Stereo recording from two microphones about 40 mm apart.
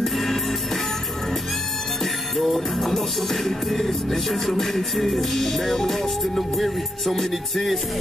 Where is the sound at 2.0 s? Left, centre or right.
Centre.